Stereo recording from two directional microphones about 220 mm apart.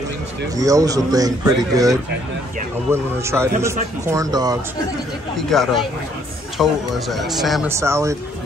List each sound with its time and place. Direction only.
0.6 s speech: 15° right (ahead or behind)
5.5 s a man's voice: centre (ahead or behind)
7.7 s speech: 10° right (ahead or behind)